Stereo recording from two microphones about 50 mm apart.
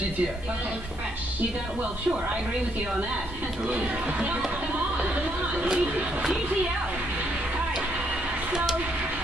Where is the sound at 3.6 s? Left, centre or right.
Right.